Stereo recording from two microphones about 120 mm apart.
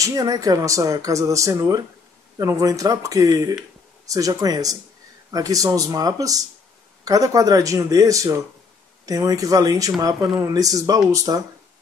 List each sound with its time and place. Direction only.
0.0 s speech: 30° right (ahead or behind)